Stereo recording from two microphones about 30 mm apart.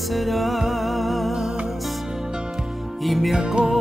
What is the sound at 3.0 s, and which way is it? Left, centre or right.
Music, centre.